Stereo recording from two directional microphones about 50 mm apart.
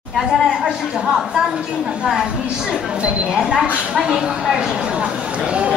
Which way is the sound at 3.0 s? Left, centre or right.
Centre.